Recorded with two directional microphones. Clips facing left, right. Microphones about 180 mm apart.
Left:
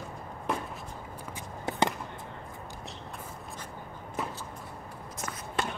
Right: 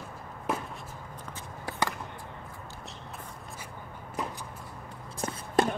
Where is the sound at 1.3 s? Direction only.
20° left (ahead or behind).